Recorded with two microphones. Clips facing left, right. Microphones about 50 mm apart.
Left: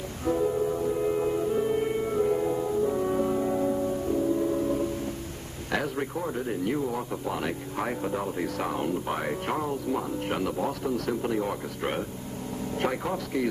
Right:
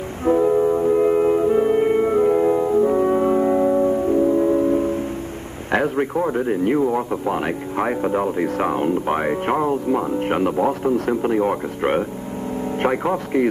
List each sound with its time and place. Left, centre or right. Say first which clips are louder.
0.2 s music: right 9 dB; right
5.7 s speech: right 10 dB; right